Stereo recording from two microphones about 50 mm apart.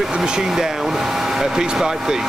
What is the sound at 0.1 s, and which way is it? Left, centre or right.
Speech, centre.